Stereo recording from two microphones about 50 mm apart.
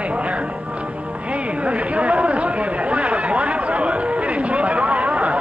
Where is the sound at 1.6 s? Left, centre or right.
Right.